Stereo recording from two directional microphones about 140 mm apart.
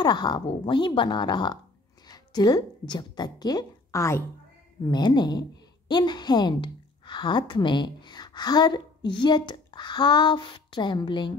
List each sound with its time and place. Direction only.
0.0 s a woman's voice: 30° left (ahead or behind)
4.9 s a woman's voice: 30° left (ahead or behind)